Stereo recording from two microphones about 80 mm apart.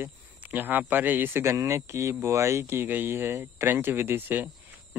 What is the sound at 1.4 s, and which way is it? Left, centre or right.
Speech, right.